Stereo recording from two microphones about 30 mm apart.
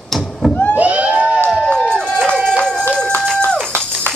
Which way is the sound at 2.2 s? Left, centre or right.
Left.